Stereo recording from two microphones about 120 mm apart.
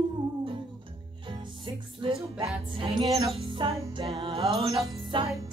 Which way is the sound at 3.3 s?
45° right (ahead or behind).